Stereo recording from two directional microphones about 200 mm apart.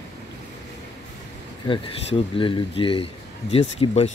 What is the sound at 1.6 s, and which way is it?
Speech, 25° left (ahead or behind).